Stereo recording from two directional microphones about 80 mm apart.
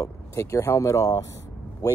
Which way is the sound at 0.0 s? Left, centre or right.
Left.